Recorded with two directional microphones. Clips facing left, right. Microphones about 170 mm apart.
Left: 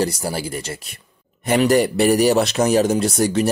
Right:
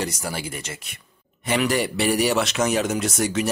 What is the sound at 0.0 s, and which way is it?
Speech, 35° left (ahead or behind).